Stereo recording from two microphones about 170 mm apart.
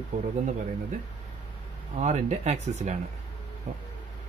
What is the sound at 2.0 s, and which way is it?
Speech, 45° right (ahead or behind).